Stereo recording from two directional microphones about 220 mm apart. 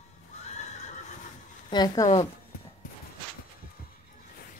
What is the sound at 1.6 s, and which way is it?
Speech, 20° left (ahead or behind).